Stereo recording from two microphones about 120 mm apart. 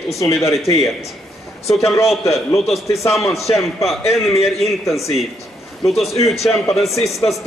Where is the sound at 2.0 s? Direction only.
Centre (ahead or behind).